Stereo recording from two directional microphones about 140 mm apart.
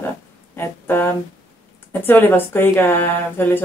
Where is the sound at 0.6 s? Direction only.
15° left (ahead or behind).